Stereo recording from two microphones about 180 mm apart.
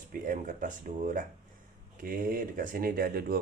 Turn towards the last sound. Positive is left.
turn(degrees=-55)  # may be behind; listen again after turning